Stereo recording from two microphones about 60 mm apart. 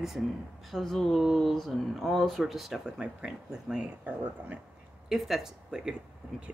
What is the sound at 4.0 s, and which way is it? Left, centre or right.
Speech, right.